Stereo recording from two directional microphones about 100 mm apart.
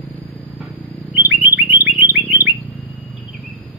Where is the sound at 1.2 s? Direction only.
20° right (ahead or behind).